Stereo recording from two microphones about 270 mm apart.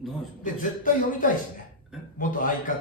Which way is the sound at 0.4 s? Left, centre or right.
Left.